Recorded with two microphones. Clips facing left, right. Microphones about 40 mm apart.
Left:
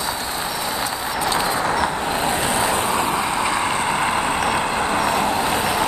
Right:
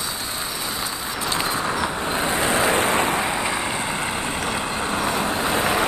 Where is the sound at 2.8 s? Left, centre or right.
Right.